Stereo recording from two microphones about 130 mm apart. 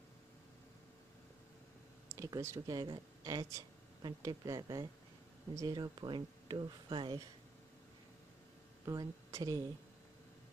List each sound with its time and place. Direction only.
2.1 s speech: 25° right (ahead or behind)
8.8 s a woman's voice: 25° right (ahead or behind)